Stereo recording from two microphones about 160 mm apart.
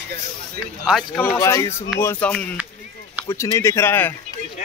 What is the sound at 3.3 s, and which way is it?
Speech, 15° left (ahead or behind).